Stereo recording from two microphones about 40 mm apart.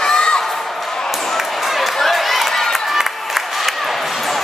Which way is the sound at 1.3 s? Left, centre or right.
Centre.